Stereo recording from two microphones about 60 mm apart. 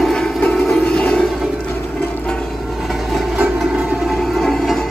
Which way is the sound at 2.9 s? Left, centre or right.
Centre.